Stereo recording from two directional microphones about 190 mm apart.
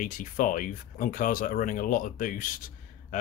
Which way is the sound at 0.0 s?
45° left (ahead or behind).